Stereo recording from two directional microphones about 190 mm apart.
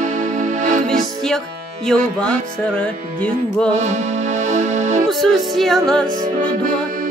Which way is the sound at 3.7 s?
35° right (ahead or behind).